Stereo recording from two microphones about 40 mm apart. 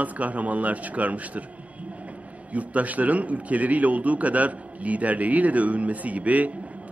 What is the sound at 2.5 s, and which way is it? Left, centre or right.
A man's voice, right.